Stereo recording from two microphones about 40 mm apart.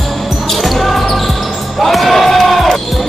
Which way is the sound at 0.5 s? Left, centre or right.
Centre.